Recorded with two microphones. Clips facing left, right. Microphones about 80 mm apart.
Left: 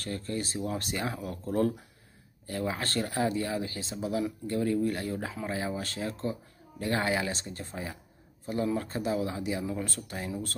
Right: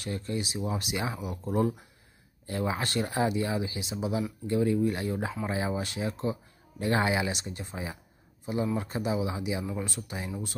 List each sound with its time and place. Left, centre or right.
0.0 s speech: centre